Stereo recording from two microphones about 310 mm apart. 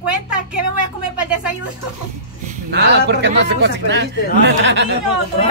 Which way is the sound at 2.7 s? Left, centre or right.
Right.